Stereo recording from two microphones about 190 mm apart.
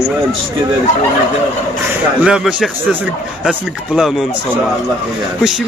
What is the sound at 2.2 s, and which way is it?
Speech, 5° right (ahead or behind).